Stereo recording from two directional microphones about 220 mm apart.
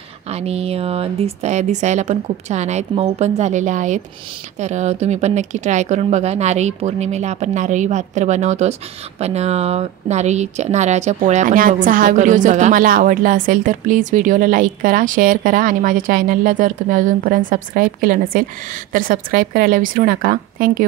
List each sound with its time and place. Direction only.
0.3 s speech: 30° right (ahead or behind)